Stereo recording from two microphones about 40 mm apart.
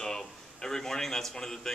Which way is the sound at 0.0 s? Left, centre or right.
Centre.